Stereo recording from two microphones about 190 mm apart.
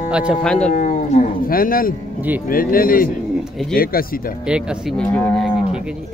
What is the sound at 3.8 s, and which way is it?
Speech, 50° left (ahead or behind).